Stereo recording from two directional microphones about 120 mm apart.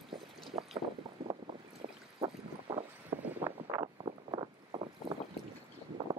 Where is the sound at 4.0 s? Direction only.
45° right (ahead or behind).